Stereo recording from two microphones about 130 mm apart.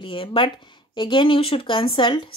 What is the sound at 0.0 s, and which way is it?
A woman's voice, 45° left (ahead or behind).